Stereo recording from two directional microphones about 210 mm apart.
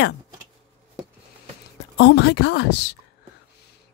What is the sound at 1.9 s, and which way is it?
Speech, 55° left (ahead or behind).